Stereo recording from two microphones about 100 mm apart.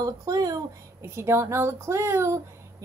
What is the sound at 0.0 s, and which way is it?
Speech, 35° right (ahead or behind).